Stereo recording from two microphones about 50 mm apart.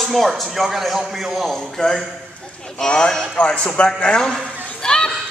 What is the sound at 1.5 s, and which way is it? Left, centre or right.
Speech, centre.